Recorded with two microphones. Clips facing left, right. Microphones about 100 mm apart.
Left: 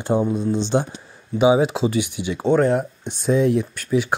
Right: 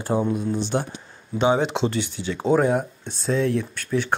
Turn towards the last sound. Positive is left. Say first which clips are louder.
# left 3 dB
turn(degrees=10)  # may be behind; listen again after turning